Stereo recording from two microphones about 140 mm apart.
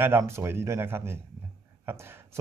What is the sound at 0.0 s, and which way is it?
Speech, 15° right (ahead or behind).